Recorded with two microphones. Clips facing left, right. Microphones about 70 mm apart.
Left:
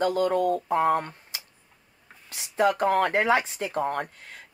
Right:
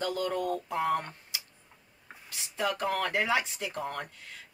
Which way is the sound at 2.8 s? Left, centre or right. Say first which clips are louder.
Left 7 dB; left.